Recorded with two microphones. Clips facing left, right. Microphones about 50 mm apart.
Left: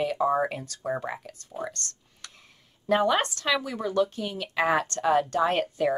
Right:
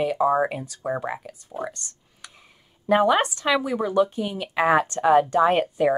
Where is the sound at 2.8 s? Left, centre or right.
Centre.